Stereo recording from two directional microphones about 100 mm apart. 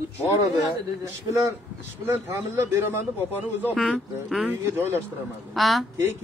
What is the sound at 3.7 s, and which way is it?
Speech, centre (ahead or behind).